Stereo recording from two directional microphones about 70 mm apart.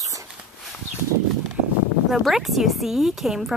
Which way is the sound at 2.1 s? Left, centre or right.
Centre.